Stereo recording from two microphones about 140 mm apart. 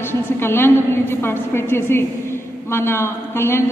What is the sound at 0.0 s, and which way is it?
A woman's voice, 15° left (ahead or behind).